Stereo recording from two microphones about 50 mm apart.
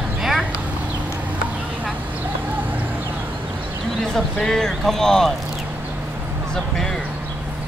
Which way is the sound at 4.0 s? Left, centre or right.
Centre.